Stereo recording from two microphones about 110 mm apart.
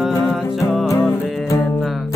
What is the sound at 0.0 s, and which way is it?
Music, 5° right (ahead or behind).